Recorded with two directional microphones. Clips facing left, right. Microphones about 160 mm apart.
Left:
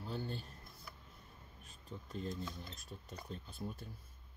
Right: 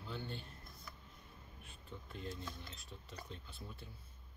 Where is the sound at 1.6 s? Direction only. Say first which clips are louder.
Left 3 dB; 40° left (ahead or behind).